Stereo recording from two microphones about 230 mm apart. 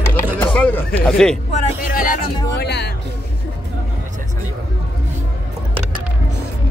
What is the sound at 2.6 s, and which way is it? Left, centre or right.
Music, left.